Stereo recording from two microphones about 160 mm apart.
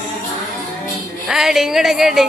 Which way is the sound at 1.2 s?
5° right (ahead or behind).